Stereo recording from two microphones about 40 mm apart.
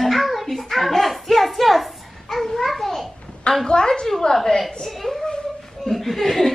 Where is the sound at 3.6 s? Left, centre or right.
Left.